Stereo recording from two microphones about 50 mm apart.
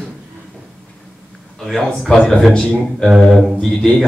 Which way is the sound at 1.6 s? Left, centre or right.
Centre.